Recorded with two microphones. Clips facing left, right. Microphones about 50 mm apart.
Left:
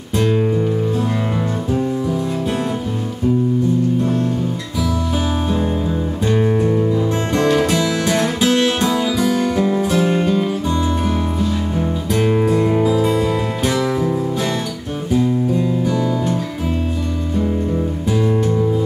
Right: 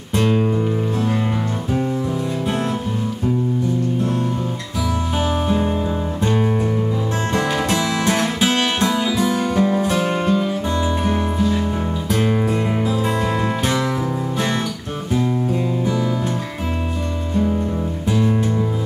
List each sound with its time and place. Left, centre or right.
6.2 s music: centre
7.7 s music: centre
12.4 s music: centre
12.9 s music: right
15.2 s guitar: centre